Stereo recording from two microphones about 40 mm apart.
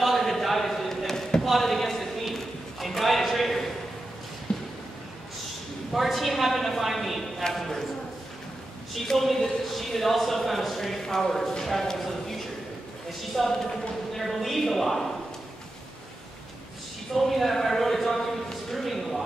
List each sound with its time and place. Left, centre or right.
0.0 s a sound: centre
4.5 s a sound: centre
5.9 s a man's voice: centre
8.9 s a man's voice: centre
13.4 s a man's voice: centre
17.1 s a man's voice: centre